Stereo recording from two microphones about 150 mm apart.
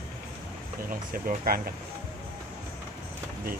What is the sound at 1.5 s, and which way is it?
Speech, 80° right.